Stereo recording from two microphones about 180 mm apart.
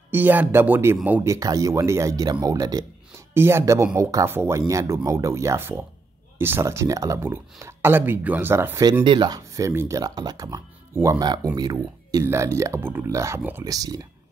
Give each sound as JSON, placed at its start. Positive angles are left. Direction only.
{"t": 0.1, "sound": "speech", "side_deg": -10}